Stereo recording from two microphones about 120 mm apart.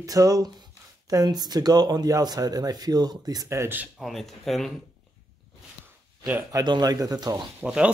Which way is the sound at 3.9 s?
Centre (ahead or behind).